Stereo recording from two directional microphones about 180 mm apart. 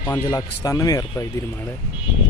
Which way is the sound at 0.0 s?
15° left (ahead or behind).